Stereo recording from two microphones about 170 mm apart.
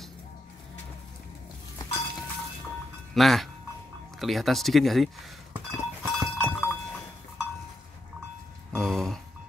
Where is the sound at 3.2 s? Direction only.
Centre (ahead or behind).